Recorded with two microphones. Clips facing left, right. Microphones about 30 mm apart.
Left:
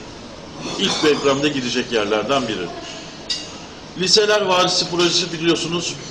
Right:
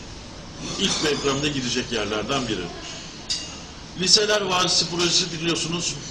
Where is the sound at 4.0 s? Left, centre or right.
Centre.